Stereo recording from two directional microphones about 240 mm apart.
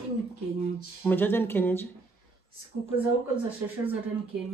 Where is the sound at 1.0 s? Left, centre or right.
Centre.